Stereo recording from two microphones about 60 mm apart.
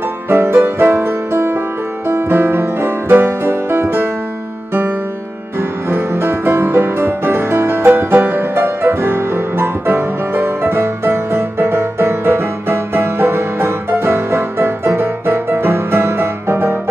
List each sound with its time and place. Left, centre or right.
0.3 s music: right
5.6 s music: right